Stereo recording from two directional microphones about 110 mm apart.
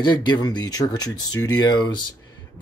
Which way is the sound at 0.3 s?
40° left (ahead or behind).